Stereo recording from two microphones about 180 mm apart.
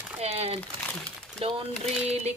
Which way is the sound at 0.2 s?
35° right (ahead or behind).